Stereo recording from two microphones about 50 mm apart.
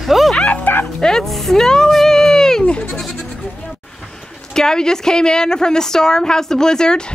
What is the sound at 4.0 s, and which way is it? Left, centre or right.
A woman's voice, centre.